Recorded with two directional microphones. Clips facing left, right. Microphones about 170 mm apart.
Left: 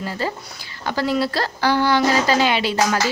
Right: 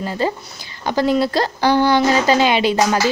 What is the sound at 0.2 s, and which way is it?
A woman's voice, 20° right (ahead or behind).